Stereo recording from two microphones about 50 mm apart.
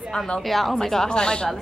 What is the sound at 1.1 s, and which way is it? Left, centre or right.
Speech, centre.